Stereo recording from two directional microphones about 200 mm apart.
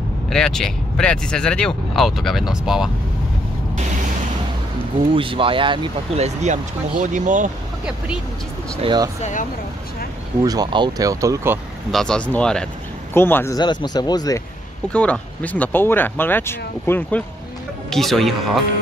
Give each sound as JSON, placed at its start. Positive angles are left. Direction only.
{"t": 0.3, "sound": "speech", "side_deg": 5}
{"t": 5.1, "sound": "speech", "side_deg": -25}
{"t": 8.8, "sound": "speech", "side_deg": -20}
{"t": 9.2, "sound": "speech", "side_deg": 40}
{"t": 10.4, "sound": "speech", "side_deg": -20}
{"t": 11.9, "sound": "speech", "side_deg": 5}
{"t": 14.9, "sound": "speech", "side_deg": 5}
{"t": 17.8, "sound": "speech", "side_deg": 0}